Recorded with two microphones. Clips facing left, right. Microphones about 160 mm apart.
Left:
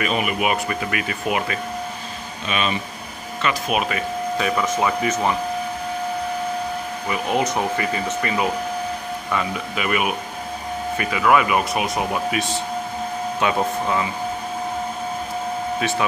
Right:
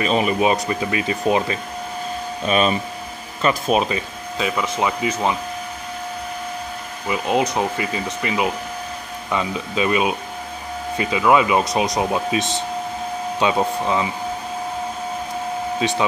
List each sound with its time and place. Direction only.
0.0 s speech: 30° right (ahead or behind)
2.4 s speech: 40° right (ahead or behind)
4.6 s speech: 15° right (ahead or behind)
7.1 s speech: 20° right (ahead or behind)